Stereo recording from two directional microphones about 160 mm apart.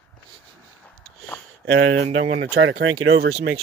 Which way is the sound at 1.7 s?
90° right.